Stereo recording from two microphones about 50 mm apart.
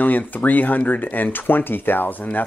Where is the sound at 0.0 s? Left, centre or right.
Left.